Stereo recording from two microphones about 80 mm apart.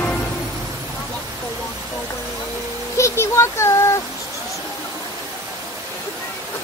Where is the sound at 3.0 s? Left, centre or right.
Left.